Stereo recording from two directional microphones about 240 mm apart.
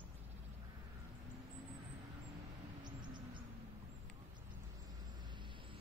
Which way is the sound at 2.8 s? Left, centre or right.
Centre.